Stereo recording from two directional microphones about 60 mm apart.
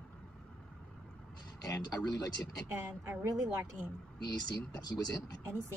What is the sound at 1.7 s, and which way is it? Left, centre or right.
Speech, left.